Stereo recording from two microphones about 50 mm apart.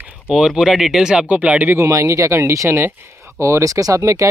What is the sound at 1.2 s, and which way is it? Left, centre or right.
Speech, right.